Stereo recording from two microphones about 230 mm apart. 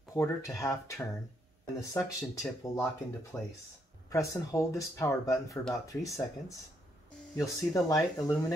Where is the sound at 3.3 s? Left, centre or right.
Centre.